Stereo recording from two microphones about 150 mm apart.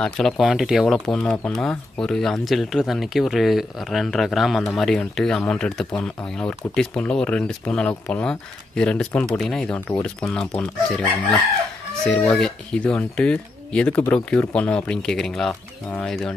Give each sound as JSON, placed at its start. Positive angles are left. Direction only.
{"t": 0.0, "sound": "speech", "side_deg": 0}